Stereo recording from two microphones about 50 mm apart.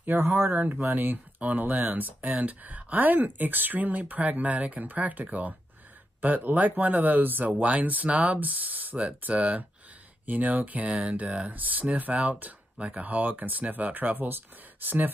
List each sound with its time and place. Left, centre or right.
0.0 s speech: right